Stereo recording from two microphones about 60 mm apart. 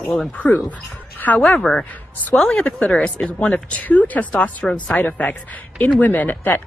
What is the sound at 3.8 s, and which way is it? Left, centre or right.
Speech, left.